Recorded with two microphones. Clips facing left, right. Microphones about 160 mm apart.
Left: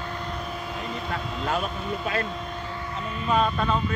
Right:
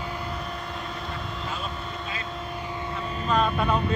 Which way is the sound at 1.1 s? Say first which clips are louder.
Left 6 dB; 65° left (ahead or behind).